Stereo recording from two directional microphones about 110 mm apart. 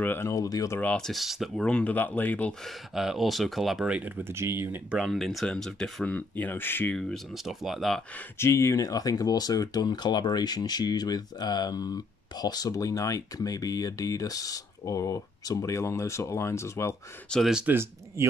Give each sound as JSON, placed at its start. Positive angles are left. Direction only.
{"t": 0.0, "sound": "speech", "side_deg": 20}
{"t": 0.7, "sound": "speech", "side_deg": 10}
{"t": 2.6, "sound": "speech", "side_deg": -5}
{"t": 4.9, "sound": "speech", "side_deg": 0}
{"t": 7.0, "sound": "speech", "side_deg": 0}
{"t": 8.4, "sound": "speech", "side_deg": 25}
{"t": 17.5, "sound": "speech", "side_deg": -5}